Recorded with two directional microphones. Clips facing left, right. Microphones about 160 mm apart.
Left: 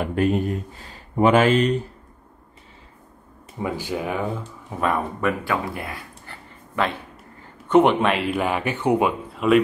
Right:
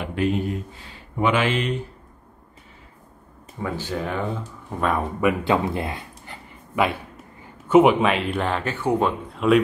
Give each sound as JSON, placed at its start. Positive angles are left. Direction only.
{"t": 0.0, "sound": "speech", "side_deg": 45}
{"t": 3.5, "sound": "speech", "side_deg": 15}
{"t": 5.4, "sound": "a sound", "side_deg": -20}
{"t": 7.6, "sound": "speech", "side_deg": -5}
{"t": 9.3, "sound": "speech", "side_deg": 0}